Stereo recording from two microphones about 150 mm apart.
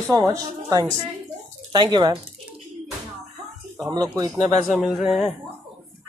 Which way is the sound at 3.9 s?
25° right (ahead or behind).